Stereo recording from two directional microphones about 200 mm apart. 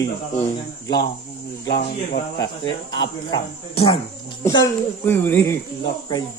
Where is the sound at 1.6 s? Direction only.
60° left (ahead or behind).